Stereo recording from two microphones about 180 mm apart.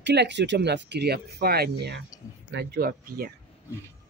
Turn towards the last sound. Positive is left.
turn(degrees=-60)  # may be behind; listen again after turning